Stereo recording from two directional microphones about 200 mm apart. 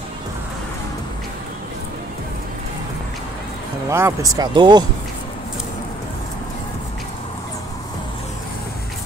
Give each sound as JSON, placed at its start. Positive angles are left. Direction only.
{"t": 3.9, "sound": "speech", "side_deg": -15}